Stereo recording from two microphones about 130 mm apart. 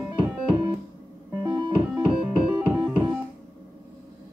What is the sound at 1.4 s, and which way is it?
Music, 35° right (ahead or behind).